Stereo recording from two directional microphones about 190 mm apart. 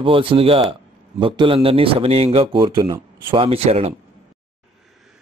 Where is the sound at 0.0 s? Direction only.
30° right (ahead or behind).